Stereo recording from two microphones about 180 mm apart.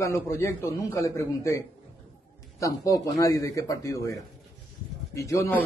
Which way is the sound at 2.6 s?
20° left (ahead or behind).